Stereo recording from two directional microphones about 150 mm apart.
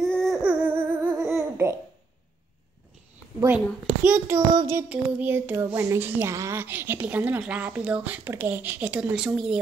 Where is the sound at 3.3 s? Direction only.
15° right (ahead or behind).